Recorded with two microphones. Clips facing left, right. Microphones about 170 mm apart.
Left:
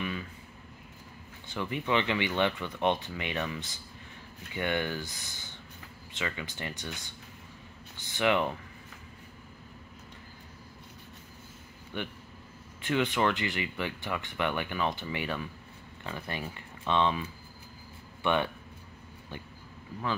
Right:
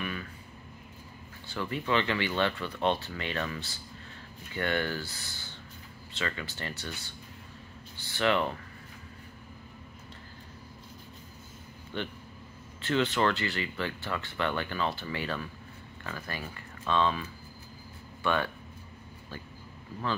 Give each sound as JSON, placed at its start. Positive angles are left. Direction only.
{"t": 0.0, "sound": "a sound", "side_deg": 20}
{"t": 1.5, "sound": "speech", "side_deg": 20}
{"t": 11.9, "sound": "speech", "side_deg": 15}